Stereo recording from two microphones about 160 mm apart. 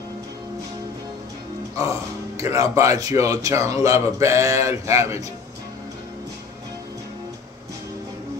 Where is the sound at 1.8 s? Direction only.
20° right (ahead or behind).